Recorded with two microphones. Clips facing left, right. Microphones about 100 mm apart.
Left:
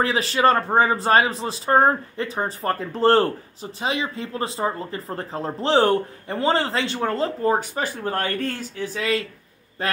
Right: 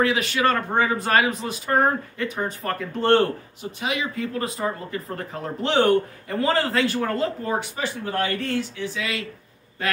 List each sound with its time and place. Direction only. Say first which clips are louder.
0.0 s speech: left 2 dB; 35° left (ahead or behind)